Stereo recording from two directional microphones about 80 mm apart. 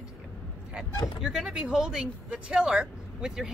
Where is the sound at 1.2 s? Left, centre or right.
Centre.